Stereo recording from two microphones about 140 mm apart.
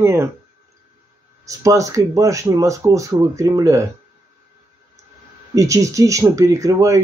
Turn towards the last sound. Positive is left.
turn(degrees=-20)  # may be behind; listen again after turning